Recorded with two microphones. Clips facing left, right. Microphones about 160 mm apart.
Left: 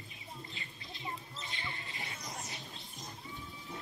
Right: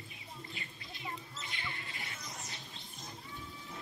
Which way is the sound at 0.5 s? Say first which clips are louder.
Even; 25° left (ahead or behind).